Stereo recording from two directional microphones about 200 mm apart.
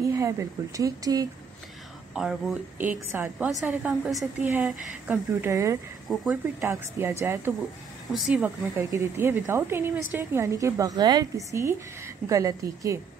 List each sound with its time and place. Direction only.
0.0 s speech: 15° right (ahead or behind)
2.1 s speech: centre (ahead or behind)
6.0 s speech: 5° right (ahead or behind)